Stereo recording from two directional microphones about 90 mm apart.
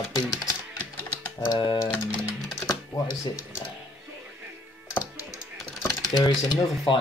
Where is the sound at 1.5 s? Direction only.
45° left (ahead or behind).